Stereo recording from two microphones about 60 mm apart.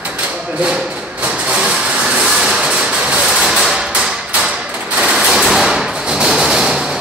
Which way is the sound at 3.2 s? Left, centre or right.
Centre.